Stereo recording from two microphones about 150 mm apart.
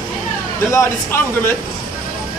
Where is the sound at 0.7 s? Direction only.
15° left (ahead or behind).